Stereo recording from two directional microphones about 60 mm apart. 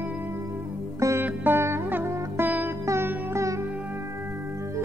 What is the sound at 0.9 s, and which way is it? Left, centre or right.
Sitar, right.